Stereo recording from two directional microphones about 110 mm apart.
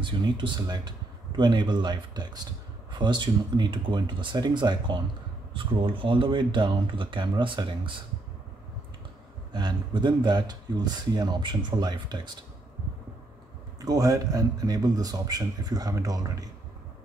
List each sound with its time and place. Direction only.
0.0 s speech: 45° right (ahead or behind)
9.5 s speech: 45° right (ahead or behind)
13.7 s speech: 35° right (ahead or behind)